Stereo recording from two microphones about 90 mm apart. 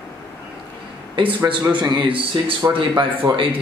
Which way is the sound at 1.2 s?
65° right (ahead or behind).